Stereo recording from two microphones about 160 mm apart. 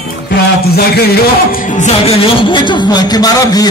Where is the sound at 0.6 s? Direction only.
80° left; by 3.7 s 25° left (ahead or behind).